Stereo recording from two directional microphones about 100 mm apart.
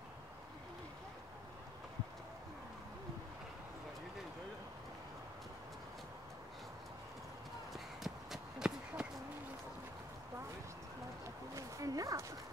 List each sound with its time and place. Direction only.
7.7 s run: centre (ahead or behind)
11.5 s dog: 35° right (ahead or behind)